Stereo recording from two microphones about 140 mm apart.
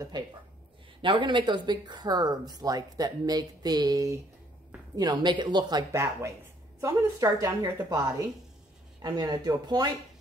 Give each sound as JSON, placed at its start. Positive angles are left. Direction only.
{"t": 1.0, "sound": "speech", "side_deg": -35}
{"t": 9.0, "sound": "speech", "side_deg": -30}